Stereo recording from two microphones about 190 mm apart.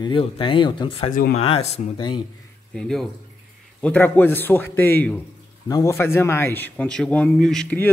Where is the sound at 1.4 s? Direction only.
30° left (ahead or behind).